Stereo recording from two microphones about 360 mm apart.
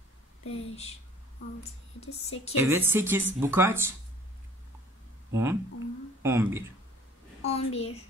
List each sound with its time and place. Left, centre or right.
0.5 s a woman's voice: centre
2.5 s speech: centre
5.3 s speech: centre
7.4 s a woman's voice: centre